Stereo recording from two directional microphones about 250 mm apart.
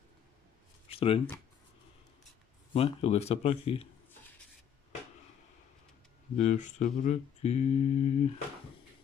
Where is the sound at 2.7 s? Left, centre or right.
Left.